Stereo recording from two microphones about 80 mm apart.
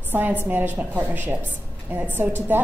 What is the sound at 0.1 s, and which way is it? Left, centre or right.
A woman's voice, right.